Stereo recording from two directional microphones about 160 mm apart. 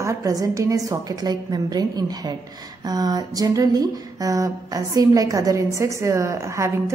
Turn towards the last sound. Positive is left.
turn(degrees=-20)  # may be behind; listen again after turning